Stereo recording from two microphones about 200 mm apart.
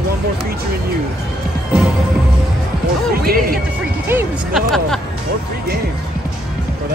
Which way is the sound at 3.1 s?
50° right (ahead or behind).